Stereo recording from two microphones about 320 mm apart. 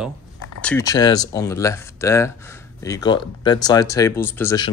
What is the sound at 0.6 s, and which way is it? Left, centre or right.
Speech, centre.